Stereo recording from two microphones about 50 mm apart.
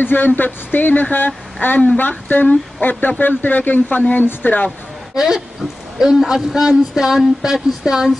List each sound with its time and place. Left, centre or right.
0.0 s speech: left
5.1 s speech: centre